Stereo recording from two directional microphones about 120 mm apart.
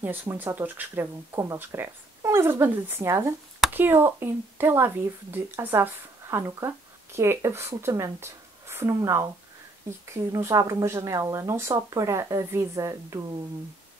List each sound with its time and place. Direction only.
0.0 s speech: 15° right (ahead or behind)